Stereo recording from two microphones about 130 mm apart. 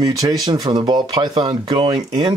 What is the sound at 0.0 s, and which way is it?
Speech, 30° right (ahead or behind).